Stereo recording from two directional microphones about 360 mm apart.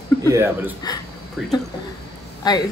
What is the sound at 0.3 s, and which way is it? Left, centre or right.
Speech, centre.